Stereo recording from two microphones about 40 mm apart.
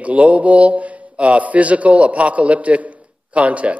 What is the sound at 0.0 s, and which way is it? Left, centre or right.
A man's voice, right.